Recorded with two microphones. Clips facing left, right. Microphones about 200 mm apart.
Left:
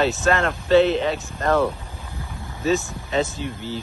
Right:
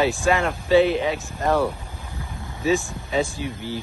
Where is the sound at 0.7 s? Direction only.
15° right (ahead or behind).